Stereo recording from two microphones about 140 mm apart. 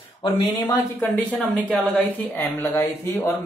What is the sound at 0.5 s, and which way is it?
Speech, 15° left (ahead or behind).